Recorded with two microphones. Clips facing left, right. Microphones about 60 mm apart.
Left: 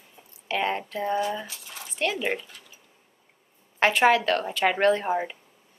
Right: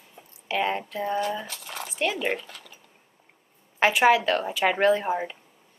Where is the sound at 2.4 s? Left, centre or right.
Right.